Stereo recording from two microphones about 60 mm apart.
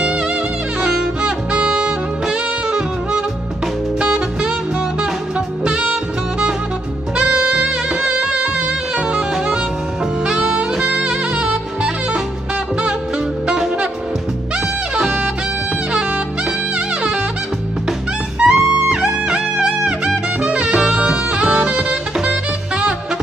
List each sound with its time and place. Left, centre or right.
0.0 s music: centre
4.0 s saxophone: centre
5.6 s saxophone: centre
7.2 s music: right
10.2 s saxophone: centre
15.0 s music: centre
18.4 s music: centre
20.4 s saxophone: centre
22.3 s music: centre